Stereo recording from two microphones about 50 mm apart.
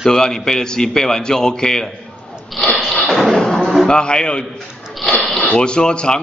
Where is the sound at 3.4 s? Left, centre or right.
Centre.